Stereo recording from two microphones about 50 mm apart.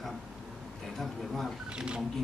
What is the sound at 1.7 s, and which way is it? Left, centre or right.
Speech, centre.